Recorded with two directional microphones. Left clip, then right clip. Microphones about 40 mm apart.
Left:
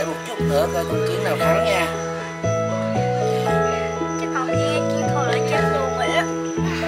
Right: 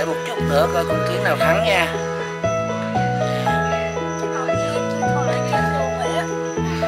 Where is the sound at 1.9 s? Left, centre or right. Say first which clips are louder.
Right 2 dB; centre.